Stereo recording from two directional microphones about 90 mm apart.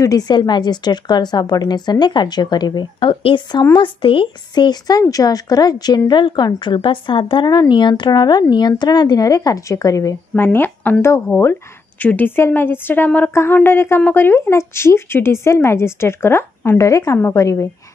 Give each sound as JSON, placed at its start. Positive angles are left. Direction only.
{"t": 0.0, "sound": "a woman's voice", "side_deg": 45}
{"t": 7.4, "sound": "a woman's voice", "side_deg": 50}
{"t": 10.3, "sound": "a woman's voice", "side_deg": 25}